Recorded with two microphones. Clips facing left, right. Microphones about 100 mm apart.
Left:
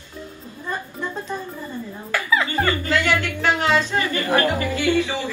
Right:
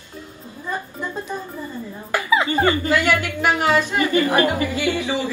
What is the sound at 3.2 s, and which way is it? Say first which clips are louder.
A woman's voice: right 1 dB; 15° right (ahead or behind).